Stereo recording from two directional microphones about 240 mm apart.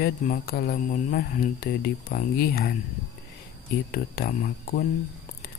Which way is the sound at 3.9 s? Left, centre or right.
Left.